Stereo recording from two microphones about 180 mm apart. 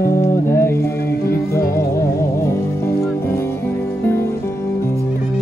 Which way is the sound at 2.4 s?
15° left (ahead or behind).